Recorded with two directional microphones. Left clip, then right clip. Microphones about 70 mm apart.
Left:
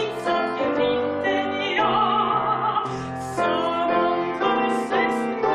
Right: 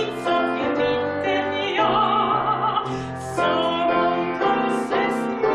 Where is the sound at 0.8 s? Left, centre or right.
Left.